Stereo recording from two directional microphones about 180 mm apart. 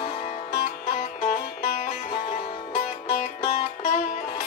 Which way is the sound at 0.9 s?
40° left (ahead or behind).